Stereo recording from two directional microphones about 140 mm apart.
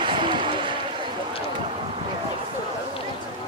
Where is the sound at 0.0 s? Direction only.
35° right (ahead or behind).